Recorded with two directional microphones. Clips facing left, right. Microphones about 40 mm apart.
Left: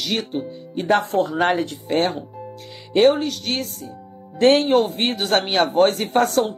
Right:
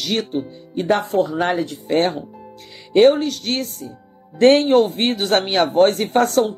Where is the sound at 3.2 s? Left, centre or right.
Centre.